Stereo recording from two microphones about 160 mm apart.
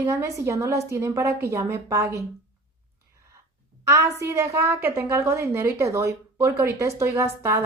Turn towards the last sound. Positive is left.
turn(degrees=-15)  # may be behind; listen again after turning